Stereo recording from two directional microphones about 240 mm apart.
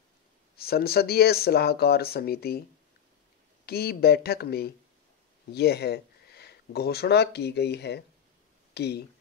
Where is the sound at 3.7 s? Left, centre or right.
Left.